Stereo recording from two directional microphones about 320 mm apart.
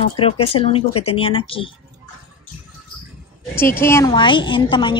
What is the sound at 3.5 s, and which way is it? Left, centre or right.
A woman's voice, centre.